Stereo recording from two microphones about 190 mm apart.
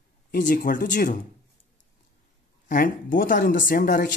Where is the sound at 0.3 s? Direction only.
50° left (ahead or behind).